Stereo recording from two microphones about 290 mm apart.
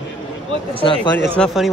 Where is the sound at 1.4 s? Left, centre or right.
Centre.